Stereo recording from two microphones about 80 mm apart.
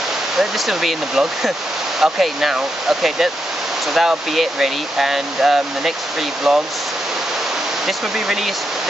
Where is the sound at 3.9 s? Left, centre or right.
Centre.